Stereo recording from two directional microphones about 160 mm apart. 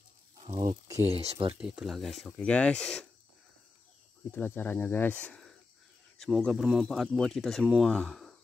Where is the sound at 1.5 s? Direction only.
5° right (ahead or behind).